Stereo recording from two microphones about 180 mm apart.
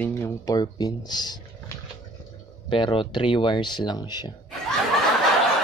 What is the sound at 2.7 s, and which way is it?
Speech, 25° left (ahead or behind).